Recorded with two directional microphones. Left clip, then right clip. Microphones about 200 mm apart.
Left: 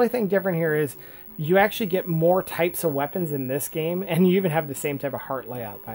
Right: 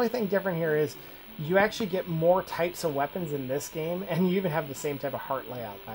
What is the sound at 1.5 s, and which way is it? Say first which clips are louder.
Speech: left 5 dB; 35° left (ahead or behind).